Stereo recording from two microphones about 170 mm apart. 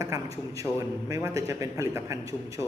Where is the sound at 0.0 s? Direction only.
20° right (ahead or behind).